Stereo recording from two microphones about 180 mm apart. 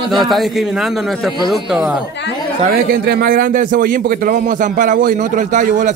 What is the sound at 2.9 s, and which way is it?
A man's voice, 60° right (ahead or behind).